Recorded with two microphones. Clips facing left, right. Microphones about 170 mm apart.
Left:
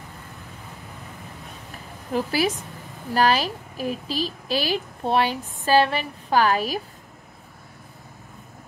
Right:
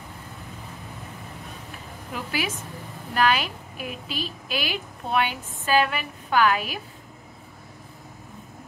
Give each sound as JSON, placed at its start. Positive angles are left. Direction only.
{"t": 2.1, "sound": "a woman's voice", "side_deg": 35}